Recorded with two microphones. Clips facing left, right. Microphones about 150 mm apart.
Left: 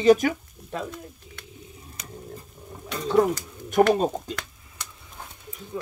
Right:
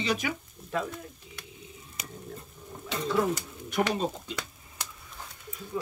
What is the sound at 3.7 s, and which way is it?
Speech, 45° left (ahead or behind).